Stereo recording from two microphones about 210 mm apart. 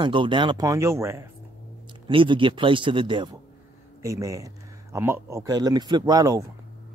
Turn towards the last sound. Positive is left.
turn(degrees=-15)  # may be behind; listen again after turning